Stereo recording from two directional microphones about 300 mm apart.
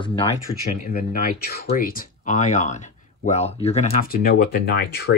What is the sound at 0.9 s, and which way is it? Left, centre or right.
Speech, left.